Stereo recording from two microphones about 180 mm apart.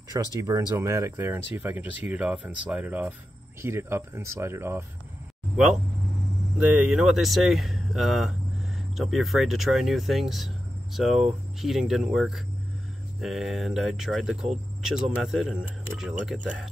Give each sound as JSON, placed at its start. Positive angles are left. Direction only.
{"t": 0.1, "sound": "speech", "side_deg": -20}
{"t": 6.6, "sound": "speech", "side_deg": -5}
{"t": 14.5, "sound": "cricket", "side_deg": -5}
{"t": 15.2, "sound": "speech", "side_deg": 0}